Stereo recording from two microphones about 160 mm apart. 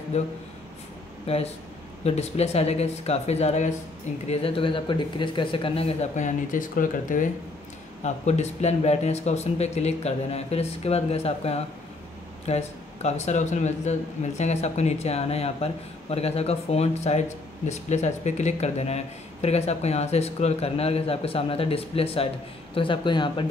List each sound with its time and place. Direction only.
0.1 s a man's voice: 45° left (ahead or behind)
8.0 s a man's voice: 45° left (ahead or behind); by 23.4 s 30° left (ahead or behind)